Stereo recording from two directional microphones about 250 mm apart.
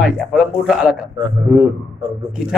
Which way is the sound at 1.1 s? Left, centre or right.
Centre.